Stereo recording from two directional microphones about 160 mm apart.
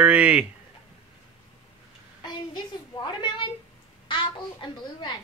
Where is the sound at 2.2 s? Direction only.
30° left (ahead or behind).